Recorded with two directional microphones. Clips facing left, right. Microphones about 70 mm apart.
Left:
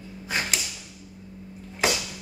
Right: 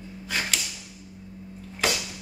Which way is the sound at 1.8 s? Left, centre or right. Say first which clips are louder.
Left 2 dB; centre.